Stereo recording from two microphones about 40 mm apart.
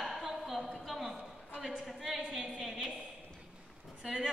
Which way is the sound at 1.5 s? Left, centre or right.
Centre.